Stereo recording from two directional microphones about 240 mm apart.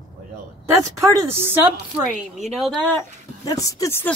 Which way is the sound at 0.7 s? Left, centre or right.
Centre.